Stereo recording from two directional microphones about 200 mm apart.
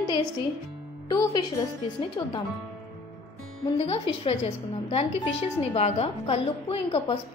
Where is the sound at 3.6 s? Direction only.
30° left (ahead or behind).